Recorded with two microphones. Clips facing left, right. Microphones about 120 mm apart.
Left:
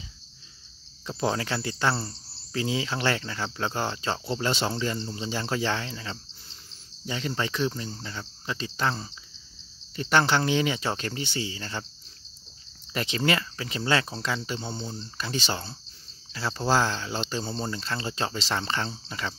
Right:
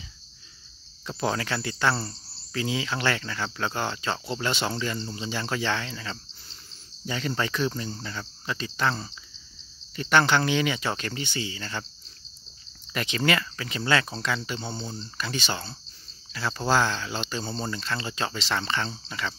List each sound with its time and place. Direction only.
1.0 s cricket: 25° left (ahead or behind)
2.5 s speech: 30° left (ahead or behind)
7.1 s cricket: 20° left (ahead or behind)
8.9 s speech: 15° left (ahead or behind)
9.9 s speech: 30° left (ahead or behind)
12.9 s cricket: 30° left (ahead or behind)
15.1 s speech: 35° left (ahead or behind)
16.3 s cricket: 30° left (ahead or behind)
17.6 s speech: 30° left (ahead or behind)
18.9 s cricket: 30° left (ahead or behind)